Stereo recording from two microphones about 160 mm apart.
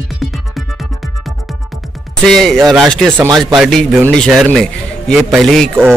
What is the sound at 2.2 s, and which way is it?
Speech, 5° left (ahead or behind).